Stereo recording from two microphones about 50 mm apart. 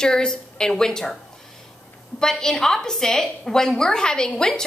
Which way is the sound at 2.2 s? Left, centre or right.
Centre.